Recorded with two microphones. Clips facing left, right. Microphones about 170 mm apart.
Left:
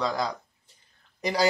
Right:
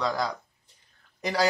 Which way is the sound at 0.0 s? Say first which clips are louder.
Even; 20° left (ahead or behind).